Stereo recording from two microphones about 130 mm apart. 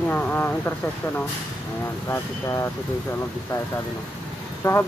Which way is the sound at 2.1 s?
25° left (ahead or behind).